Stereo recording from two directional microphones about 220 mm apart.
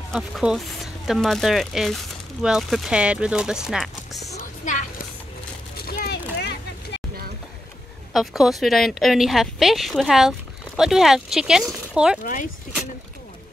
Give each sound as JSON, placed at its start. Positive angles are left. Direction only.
{"t": 0.1, "sound": "speech", "side_deg": 0}
{"t": 5.9, "sound": "a sound", "side_deg": 45}
{"t": 6.3, "sound": "vehicle", "side_deg": 50}
{"t": 8.1, "sound": "speech", "side_deg": 0}
{"t": 12.2, "sound": "speech", "side_deg": 40}